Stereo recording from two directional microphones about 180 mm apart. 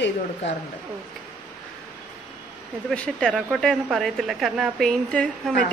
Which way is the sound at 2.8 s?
5° left (ahead or behind).